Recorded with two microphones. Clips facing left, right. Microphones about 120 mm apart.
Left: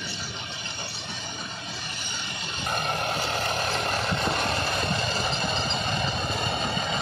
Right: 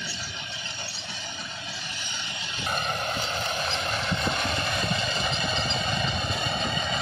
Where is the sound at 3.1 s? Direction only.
35° left (ahead or behind).